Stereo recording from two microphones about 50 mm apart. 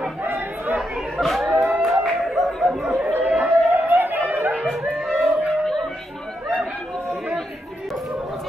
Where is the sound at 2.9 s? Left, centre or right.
Right.